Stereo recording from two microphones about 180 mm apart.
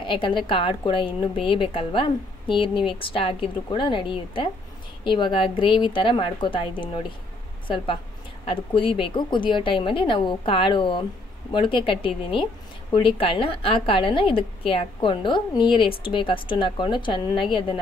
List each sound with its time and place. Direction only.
0.0 s a woman's voice: 25° left (ahead or behind)